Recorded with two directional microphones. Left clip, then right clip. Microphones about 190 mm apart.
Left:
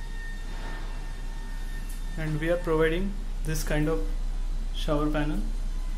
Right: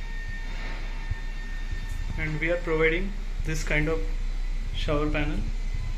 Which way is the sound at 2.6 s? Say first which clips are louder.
Right 2 dB; 25° left (ahead or behind).